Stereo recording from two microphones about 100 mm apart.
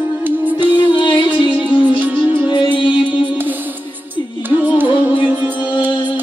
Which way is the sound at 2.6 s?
55° left (ahead or behind).